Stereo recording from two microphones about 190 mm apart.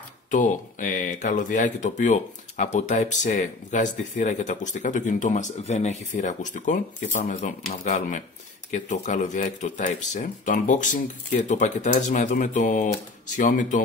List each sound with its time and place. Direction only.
0.3 s speech: 40° left (ahead or behind)